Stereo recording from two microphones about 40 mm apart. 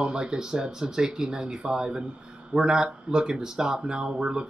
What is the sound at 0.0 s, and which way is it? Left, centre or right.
Speech, right.